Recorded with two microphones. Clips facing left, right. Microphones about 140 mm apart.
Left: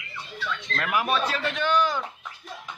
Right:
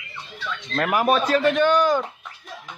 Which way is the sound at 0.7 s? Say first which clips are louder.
Right 6 dB; 45° right (ahead or behind).